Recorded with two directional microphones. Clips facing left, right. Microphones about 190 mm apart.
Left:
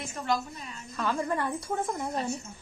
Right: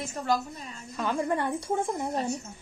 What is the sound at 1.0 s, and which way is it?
A woman's voice, 20° right (ahead or behind).